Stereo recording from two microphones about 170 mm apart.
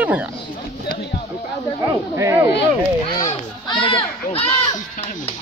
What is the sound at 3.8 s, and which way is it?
Speech, 35° left (ahead or behind).